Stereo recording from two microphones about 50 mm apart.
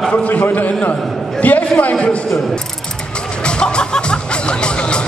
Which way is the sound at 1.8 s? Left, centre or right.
Left.